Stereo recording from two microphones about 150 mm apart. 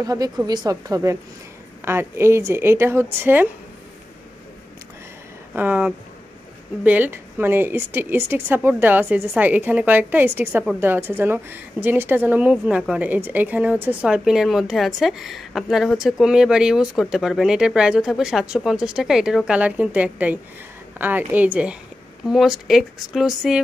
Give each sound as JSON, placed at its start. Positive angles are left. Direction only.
{"t": 0.0, "sound": "a woman's voice", "side_deg": -25}
{"t": 5.5, "sound": "a woman's voice", "side_deg": -10}